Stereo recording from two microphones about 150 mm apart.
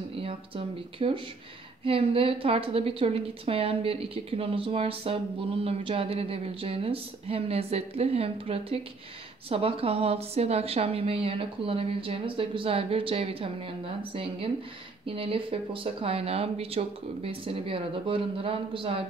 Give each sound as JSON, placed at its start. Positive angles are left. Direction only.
{"t": 0.2, "sound": "a woman's voice", "side_deg": -40}